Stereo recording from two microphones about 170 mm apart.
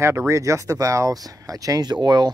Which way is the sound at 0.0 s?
15° right (ahead or behind).